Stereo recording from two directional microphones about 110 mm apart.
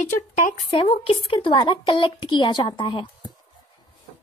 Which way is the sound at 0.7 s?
55° left (ahead or behind).